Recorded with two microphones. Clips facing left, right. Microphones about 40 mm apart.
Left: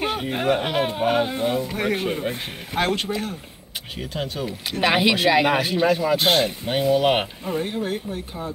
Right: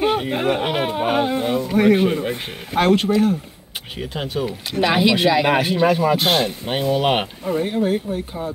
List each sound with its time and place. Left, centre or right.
0.1 s speech: centre
4.0 s speech: centre
4.6 s speech: centre
5.5 s speech: centre
6.1 s speech: centre
6.6 s speech: centre